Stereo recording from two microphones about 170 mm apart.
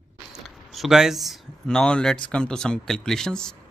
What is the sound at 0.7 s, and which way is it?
Speech, centre (ahead or behind).